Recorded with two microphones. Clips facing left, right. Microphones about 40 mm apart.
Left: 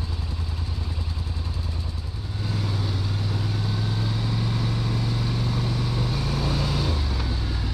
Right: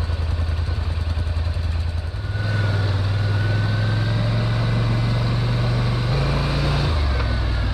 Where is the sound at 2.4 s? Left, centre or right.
Right.